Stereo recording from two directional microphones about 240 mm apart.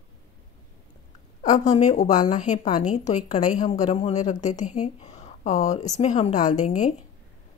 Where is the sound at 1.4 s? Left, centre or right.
Left.